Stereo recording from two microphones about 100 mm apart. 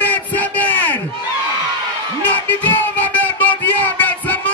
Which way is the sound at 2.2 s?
15° left (ahead or behind).